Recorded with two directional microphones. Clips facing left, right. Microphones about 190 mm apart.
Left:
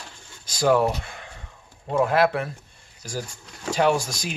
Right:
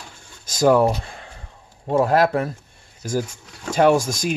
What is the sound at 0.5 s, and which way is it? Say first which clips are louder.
Speech: right 4 dB; 45° right (ahead or behind).